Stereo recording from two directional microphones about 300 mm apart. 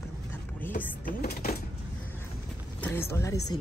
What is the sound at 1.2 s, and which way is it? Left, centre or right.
Speech, left.